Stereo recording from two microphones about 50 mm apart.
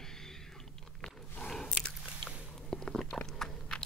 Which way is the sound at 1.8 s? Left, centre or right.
Centre.